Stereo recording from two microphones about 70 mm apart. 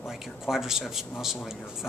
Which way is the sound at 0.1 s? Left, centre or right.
Centre.